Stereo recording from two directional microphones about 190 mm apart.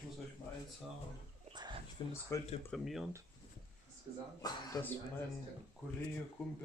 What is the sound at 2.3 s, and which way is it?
Speech, 15° left (ahead or behind).